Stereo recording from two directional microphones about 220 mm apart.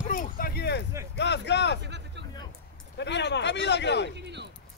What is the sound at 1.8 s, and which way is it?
Vehicle, 50° right (ahead or behind).